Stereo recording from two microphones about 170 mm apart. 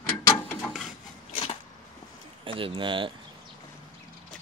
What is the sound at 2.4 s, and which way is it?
Speech, 30° right (ahead or behind).